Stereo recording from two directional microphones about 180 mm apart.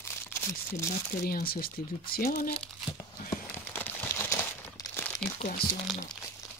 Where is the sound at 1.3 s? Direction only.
55° left (ahead or behind).